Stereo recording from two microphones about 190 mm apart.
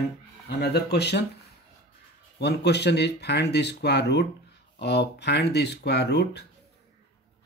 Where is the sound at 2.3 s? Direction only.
60° left (ahead or behind).